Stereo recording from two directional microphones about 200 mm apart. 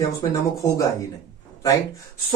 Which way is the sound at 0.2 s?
15° left (ahead or behind).